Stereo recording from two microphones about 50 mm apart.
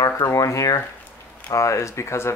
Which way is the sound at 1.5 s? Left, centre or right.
Left.